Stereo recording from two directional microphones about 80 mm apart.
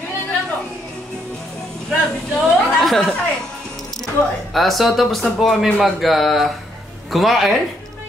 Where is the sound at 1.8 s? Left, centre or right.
Centre.